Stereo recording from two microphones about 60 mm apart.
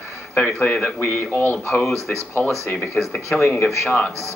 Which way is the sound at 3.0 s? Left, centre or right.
Left.